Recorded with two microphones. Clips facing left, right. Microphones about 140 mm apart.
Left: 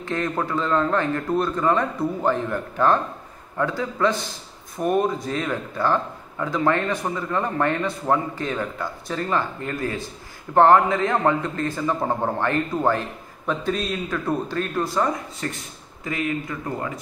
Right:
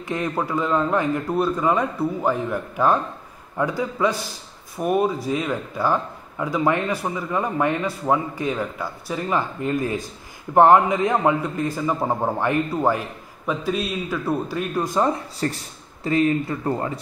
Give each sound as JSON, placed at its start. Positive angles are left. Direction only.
{"t": 0.0, "sound": "a man's voice", "side_deg": -15}
{"t": 15.0, "sound": "speech", "side_deg": -30}